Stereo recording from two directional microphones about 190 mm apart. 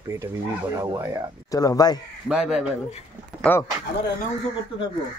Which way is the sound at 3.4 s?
10° left (ahead or behind).